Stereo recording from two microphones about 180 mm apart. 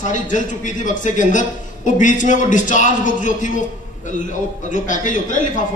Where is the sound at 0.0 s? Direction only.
45° left (ahead or behind).